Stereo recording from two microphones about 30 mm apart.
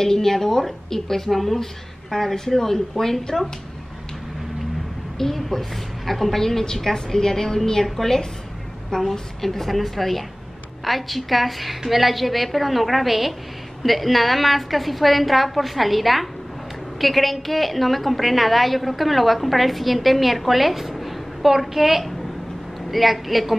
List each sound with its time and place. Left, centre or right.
0.0 s a woman's voice: centre
5.2 s a woman's voice: centre
9.4 s a woman's voice: centre
20.9 s a sound: centre
21.5 s a woman's voice: centre